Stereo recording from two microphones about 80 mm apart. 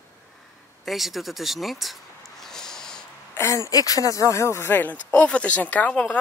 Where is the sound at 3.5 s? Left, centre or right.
Left.